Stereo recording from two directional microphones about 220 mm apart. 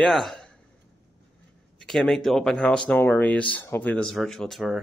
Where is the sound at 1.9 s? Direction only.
Centre (ahead or behind).